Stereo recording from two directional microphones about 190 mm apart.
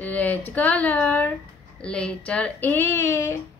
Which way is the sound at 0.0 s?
10° left (ahead or behind).